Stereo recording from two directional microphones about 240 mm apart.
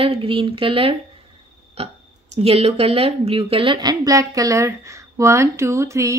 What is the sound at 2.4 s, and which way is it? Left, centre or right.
Speech, right.